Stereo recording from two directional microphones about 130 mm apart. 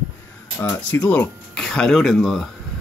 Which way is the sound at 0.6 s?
15° left (ahead or behind).